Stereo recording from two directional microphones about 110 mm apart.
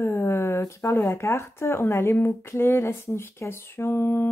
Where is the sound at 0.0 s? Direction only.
20° left (ahead or behind).